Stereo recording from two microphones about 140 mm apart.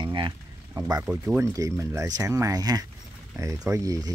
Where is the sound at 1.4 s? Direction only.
20° right (ahead or behind).